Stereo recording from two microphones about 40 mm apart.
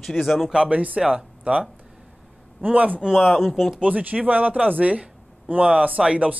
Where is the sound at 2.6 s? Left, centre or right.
Right.